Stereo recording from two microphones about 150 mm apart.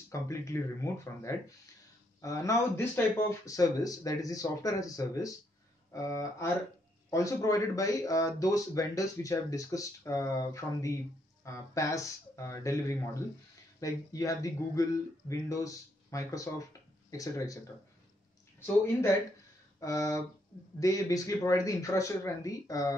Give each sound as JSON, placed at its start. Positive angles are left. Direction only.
{"t": 0.1, "sound": "speech", "side_deg": 20}
{"t": 19.8, "sound": "speech", "side_deg": 20}